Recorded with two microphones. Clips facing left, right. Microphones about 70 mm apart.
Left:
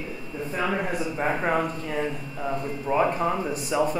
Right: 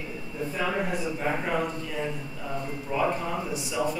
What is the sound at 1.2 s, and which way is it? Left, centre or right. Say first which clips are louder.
Speech: left 5 dB; left.